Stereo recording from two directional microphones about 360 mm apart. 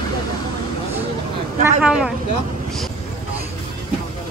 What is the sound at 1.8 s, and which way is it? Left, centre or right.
Speech, centre.